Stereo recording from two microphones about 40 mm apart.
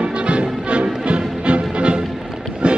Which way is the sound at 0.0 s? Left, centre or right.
Right.